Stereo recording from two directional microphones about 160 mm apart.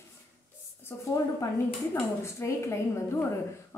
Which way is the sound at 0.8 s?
20° left (ahead or behind).